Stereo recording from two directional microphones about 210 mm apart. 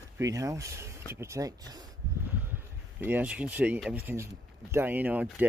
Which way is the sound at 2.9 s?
10° right (ahead or behind).